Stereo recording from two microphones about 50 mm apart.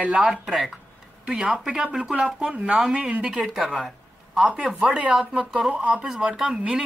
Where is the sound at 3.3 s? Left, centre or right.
Centre.